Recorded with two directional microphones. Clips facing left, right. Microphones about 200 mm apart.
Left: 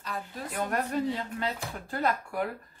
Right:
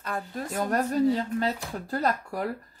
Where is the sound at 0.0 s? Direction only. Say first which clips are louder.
Right 4 dB; 45° right (ahead or behind).